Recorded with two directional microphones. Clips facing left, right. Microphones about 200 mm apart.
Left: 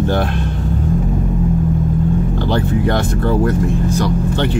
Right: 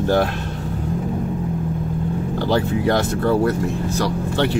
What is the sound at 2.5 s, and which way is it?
Speech, 5° right (ahead or behind).